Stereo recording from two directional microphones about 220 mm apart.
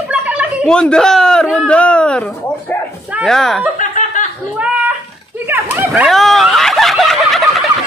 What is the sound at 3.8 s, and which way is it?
Snicker, 35° left (ahead or behind).